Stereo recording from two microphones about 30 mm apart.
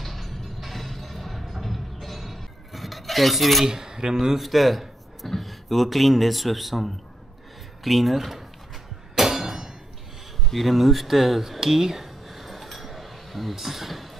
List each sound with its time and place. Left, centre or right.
0.0 s music: centre
3.6 s cutlery: centre
4.4 s speech: centre
9.1 s a sound: centre
10.5 s speech: centre
11.6 s a sound: centre